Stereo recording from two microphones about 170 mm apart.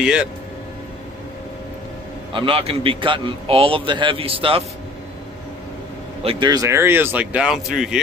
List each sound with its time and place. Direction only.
0.0 s speech: 5° right (ahead or behind)
2.3 s a man's voice: 35° right (ahead or behind)
6.2 s speech: 25° right (ahead or behind); by 8.0 s 5° right (ahead or behind)